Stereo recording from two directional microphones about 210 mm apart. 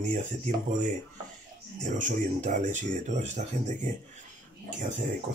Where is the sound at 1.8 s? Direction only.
35° right (ahead or behind).